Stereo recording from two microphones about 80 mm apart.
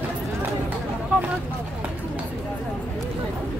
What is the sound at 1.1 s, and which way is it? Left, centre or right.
Vehicle, centre.